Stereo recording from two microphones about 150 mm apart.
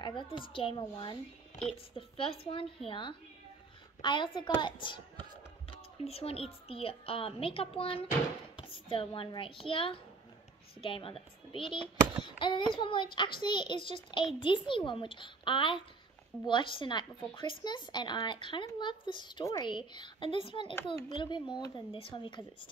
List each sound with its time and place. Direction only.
0.0 s a woman's voice: 30° left (ahead or behind)